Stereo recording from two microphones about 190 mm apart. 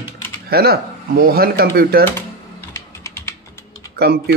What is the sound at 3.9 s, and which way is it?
Speech, 55° right (ahead or behind).